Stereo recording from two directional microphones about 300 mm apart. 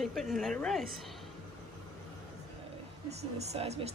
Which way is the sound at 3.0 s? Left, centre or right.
Right.